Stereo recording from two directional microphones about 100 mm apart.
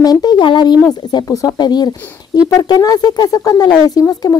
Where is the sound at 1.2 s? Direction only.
35° left (ahead or behind).